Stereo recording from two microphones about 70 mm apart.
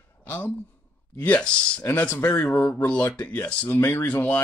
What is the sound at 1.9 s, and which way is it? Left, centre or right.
Speech, left.